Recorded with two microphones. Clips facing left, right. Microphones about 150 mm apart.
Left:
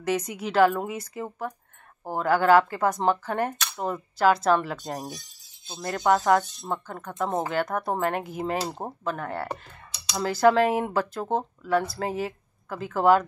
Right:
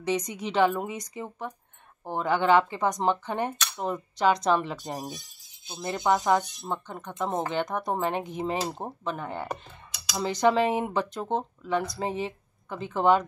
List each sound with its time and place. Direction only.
0.3 s speech: 5° left (ahead or behind)
4.7 s speech: 15° right (ahead or behind)
6.7 s speech: centre (ahead or behind)